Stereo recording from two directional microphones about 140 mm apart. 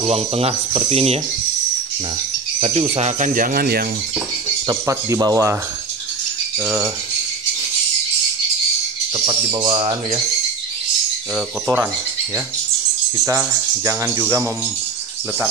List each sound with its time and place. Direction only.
0.0 s speech: 45° right (ahead or behind)
2.6 s speech: 45° right (ahead or behind); by 3.8 s 90° right
4.6 s speech: 25° right (ahead or behind)
9.1 s speech: 30° right (ahead or behind)
13.3 s speech: 20° right (ahead or behind)